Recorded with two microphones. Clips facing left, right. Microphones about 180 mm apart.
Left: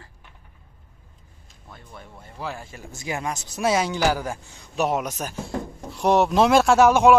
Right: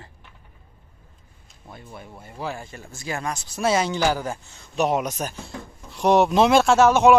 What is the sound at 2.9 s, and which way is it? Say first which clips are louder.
Speech: left 1 dB; 20° left (ahead or behind).